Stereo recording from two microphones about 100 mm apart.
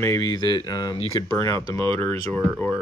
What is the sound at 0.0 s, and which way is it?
Speech, 30° left (ahead or behind).